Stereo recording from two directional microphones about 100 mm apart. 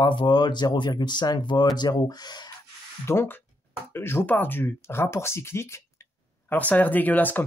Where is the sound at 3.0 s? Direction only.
25° left (ahead or behind).